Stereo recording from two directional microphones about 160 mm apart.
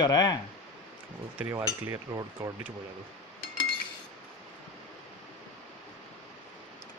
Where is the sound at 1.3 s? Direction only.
15° right (ahead or behind).